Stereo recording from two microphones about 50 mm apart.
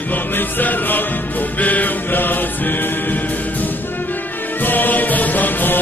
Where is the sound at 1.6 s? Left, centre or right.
Left.